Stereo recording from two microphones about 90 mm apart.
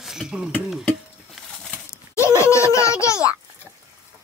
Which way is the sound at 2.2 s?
30° left (ahead or behind).